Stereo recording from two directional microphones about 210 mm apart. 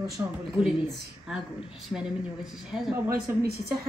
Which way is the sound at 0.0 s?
5° right (ahead or behind).